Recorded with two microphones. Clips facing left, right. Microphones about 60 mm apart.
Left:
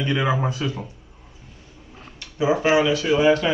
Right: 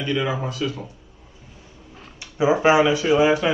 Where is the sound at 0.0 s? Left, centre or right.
Left.